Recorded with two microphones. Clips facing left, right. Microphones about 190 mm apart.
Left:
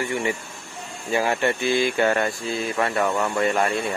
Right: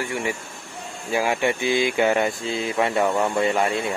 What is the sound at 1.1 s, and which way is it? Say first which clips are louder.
Speech: even; 10° right (ahead or behind).